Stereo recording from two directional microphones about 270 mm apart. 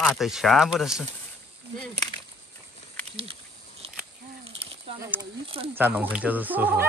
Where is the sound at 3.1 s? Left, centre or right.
Right.